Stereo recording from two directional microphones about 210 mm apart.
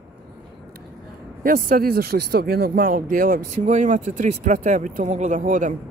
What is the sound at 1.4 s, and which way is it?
Speech, 40° right (ahead or behind).